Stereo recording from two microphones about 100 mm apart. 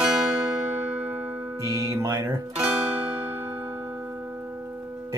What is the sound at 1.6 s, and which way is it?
Speech, 40° right (ahead or behind).